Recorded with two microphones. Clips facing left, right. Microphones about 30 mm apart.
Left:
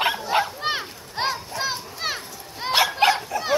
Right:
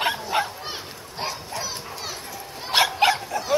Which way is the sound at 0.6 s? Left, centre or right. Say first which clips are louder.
Left 7 dB; left.